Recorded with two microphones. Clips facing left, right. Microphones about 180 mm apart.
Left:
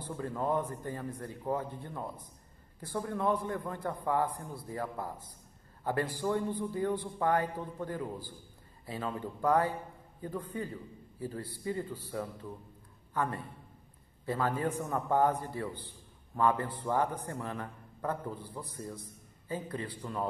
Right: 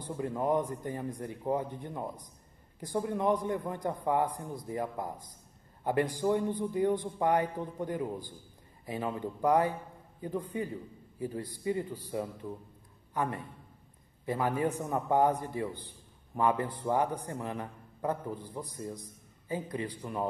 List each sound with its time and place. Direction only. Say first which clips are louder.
0.1 s a man's voice: right 3 dB; 15° right (ahead or behind)